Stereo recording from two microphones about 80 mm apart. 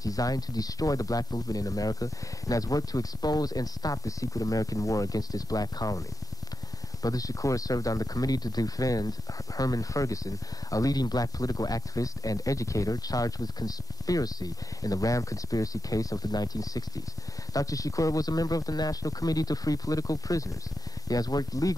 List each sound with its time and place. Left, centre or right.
0.0 s speech: left